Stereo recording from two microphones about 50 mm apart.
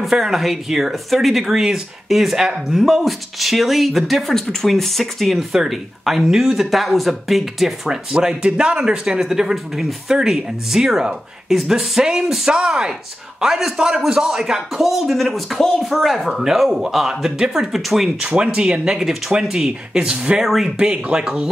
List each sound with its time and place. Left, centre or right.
0.0 s speech: centre
18.2 s speech: centre
20.4 s speech: centre
20.7 s speech: centre